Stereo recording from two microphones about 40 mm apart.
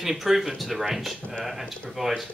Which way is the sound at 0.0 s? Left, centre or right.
Centre.